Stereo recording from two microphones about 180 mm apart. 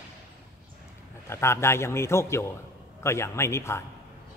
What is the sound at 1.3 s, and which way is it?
A man's voice, 15° left (ahead or behind).